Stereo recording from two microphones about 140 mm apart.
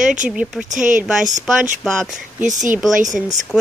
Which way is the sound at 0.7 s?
65° right (ahead or behind).